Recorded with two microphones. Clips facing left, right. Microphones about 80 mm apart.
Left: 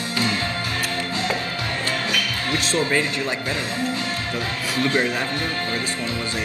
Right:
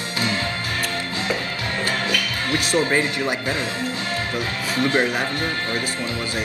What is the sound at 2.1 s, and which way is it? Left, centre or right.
Music, left.